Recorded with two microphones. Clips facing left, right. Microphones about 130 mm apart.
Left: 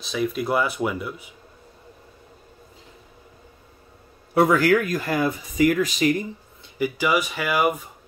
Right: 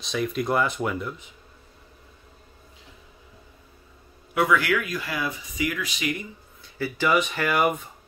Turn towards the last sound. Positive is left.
turn(degrees=5)  # may be behind; listen again after turning